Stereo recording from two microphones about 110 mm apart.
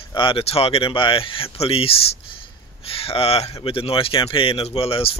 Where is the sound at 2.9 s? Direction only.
60° left (ahead or behind).